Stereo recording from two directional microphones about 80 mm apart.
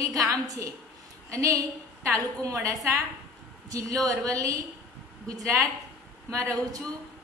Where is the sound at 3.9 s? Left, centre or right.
Right.